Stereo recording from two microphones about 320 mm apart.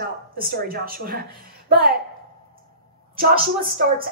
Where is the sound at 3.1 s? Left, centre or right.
Right.